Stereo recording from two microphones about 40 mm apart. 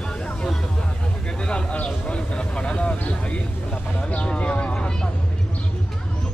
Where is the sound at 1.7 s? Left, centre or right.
Left.